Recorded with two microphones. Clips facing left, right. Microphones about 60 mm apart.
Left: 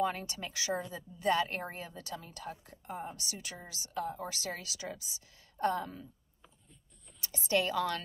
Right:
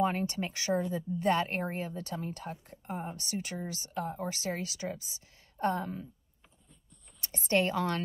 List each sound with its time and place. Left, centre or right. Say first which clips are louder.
0.0 s a woman's voice: right 4 dB; right
7.2 s a woman's voice: right 3 dB; right